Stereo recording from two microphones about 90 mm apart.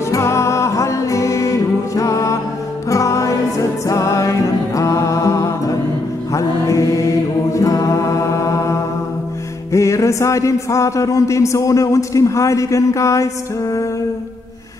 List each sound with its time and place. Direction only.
0.1 s music: 30° left (ahead or behind)
6.3 s mantra: 35° left (ahead or behind)
9.7 s a man's voice: 35° left (ahead or behind)